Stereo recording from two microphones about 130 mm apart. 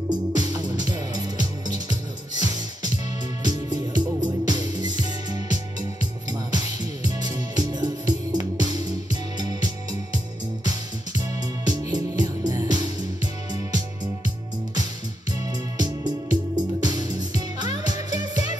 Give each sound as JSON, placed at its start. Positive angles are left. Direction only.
{"t": 0.1, "sound": "music", "side_deg": -30}
{"t": 11.1, "sound": "music", "side_deg": -30}
{"t": 15.8, "sound": "music", "side_deg": -30}